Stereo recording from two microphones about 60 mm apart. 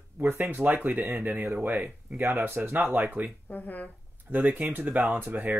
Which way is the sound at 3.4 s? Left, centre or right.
Left.